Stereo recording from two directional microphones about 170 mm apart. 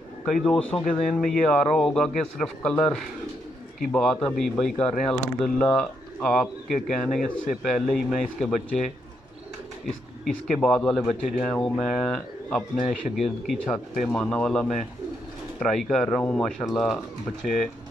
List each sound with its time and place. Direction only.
0.2 s a man's voice: 5° left (ahead or behind)
10.2 s a man's voice: 5° left (ahead or behind)
12.7 s speech: 50° left (ahead or behind)
14.0 s a man's voice: 5° left (ahead or behind)